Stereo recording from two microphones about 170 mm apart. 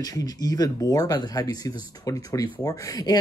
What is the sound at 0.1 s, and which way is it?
Speech, 20° left (ahead or behind).